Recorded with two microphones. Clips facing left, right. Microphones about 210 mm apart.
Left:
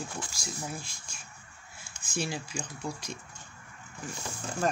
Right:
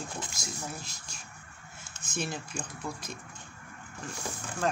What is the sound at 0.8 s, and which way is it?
Speech, 40° right (ahead or behind).